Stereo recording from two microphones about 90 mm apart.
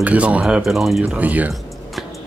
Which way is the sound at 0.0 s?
15° right (ahead or behind).